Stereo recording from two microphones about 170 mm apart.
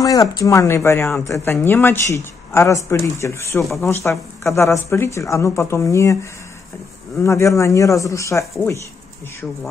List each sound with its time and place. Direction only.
0.0 s speech: 20° left (ahead or behind)
3.6 s speech: centre (ahead or behind)
3.9 s speech: 15° left (ahead or behind)
7.2 s speech: 15° left (ahead or behind)